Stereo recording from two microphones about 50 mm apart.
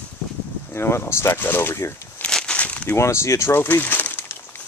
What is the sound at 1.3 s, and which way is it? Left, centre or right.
Speech, left.